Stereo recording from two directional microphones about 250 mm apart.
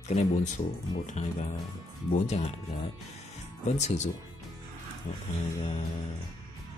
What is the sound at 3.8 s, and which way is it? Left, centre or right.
Speech, left.